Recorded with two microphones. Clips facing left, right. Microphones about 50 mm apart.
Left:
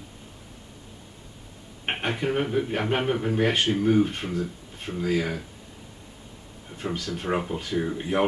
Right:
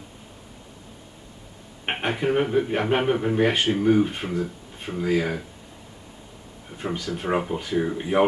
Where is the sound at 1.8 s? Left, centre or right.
Centre.